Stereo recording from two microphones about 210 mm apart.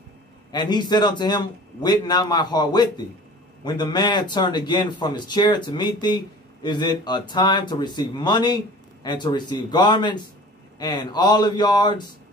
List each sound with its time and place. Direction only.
0.5 s speech: 20° left (ahead or behind)